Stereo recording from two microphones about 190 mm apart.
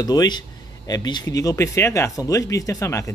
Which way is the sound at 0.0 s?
20° left (ahead or behind).